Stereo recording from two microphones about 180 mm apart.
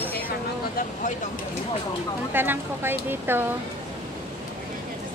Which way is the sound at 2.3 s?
10° right (ahead or behind).